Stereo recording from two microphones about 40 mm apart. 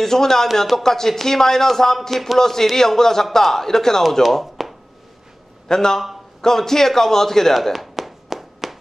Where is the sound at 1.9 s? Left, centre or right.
Centre.